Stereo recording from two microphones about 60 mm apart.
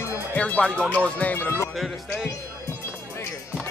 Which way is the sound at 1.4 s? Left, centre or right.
Left.